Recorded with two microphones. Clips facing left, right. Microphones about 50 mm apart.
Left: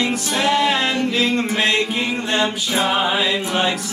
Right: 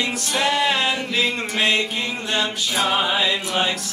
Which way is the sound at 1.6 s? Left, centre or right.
Centre.